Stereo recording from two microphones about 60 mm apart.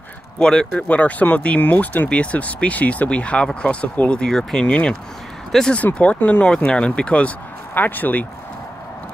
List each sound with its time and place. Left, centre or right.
0.4 s speech: centre
0.8 s speech: left
5.5 s speech: centre
5.9 s speech: left
7.7 s speech: left